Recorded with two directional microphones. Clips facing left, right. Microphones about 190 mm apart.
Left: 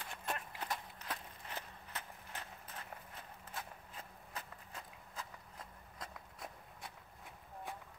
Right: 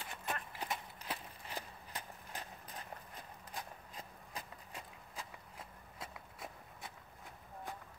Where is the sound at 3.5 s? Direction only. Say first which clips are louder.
Right 1 dB; 15° right (ahead or behind).